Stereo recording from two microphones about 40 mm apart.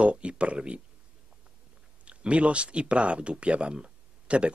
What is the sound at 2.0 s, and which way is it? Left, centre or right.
Speech, right.